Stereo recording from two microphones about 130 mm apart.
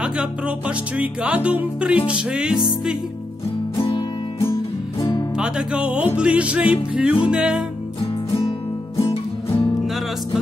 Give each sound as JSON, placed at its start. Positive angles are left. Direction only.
{"t": 0.0, "sound": "music", "side_deg": -10}
{"t": 3.8, "sound": "music", "side_deg": 40}
{"t": 5.4, "sound": "music", "side_deg": -5}
{"t": 9.0, "sound": "music", "side_deg": 45}